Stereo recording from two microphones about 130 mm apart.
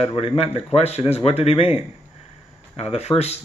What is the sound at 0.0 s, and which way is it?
Speech, 50° left (ahead or behind).